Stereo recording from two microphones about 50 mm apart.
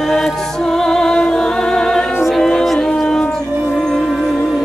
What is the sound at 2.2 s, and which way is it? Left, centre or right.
Music, centre.